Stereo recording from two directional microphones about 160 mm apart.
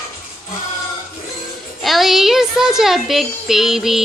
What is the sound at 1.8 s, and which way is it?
Speech, centre (ahead or behind).